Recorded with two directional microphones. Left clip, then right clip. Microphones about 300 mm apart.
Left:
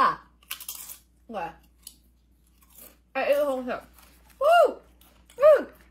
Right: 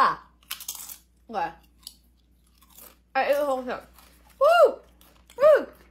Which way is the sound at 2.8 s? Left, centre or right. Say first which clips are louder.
Right 4 dB; centre.